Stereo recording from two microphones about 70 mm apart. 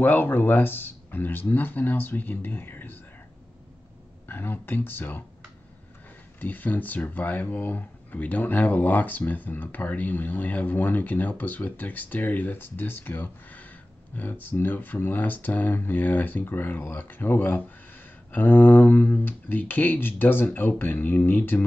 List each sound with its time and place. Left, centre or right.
0.0 s speech: left
4.3 s speech: left
6.4 s speech: left